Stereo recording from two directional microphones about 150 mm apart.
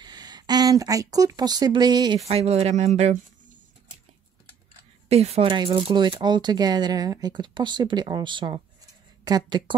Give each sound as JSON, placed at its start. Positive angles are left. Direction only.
{"t": 0.0, "sound": "speech", "side_deg": -30}
{"t": 2.2, "sound": "speech", "side_deg": -45}
{"t": 5.0, "sound": "speech", "side_deg": -45}